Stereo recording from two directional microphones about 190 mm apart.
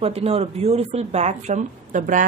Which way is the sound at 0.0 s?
30° right (ahead or behind).